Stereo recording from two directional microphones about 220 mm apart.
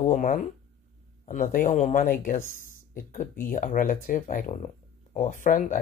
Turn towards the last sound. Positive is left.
turn(degrees=35)  # may be behind; listen again after turning